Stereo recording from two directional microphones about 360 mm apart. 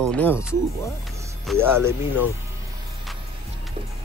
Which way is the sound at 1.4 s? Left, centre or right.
Centre.